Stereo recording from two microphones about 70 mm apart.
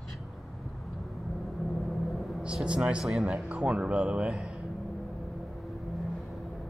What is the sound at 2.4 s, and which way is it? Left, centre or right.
Speech, centre.